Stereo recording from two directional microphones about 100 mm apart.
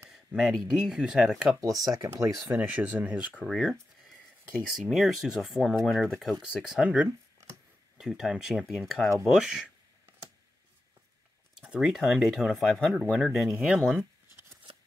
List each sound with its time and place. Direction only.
0.1 s speech: 5° right (ahead or behind)
1.9 s speech: 30° right (ahead or behind)
2.5 s speech: 15° right (ahead or behind)
3.4 s speech: centre (ahead or behind)
11.5 s speech: 5° right (ahead or behind)